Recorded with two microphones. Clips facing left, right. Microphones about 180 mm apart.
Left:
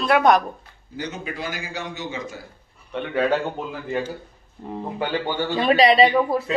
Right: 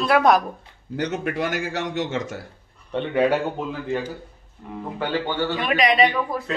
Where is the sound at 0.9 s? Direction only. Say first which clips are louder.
Right 6 dB; 65° right (ahead or behind).